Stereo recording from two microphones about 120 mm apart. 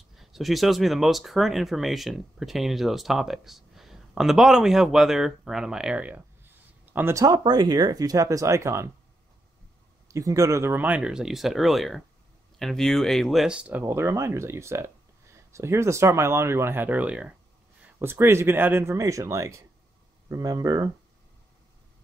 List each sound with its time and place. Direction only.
0.1 s speech: centre (ahead or behind)
7.2 s speech: 35° right (ahead or behind)
10.0 s speech: 25° right (ahead or behind); by 17.3 s 10° right (ahead or behind)
17.9 s speech: 20° right (ahead or behind)